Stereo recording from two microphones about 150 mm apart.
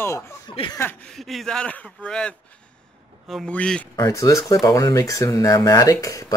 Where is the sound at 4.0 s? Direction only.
20° left (ahead or behind).